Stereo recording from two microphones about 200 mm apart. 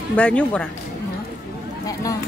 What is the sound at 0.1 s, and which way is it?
Speech, 5° left (ahead or behind).